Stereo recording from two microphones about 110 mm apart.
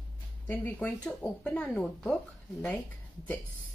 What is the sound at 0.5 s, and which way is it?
Speech, 15° left (ahead or behind).